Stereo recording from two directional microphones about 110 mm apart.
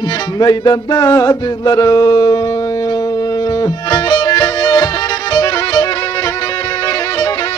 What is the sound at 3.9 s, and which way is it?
Music, 40° left (ahead or behind).